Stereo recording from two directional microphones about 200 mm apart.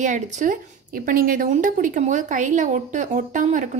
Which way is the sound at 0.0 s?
40° right (ahead or behind).